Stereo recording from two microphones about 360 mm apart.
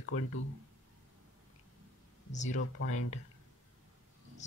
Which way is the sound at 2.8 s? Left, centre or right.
Left.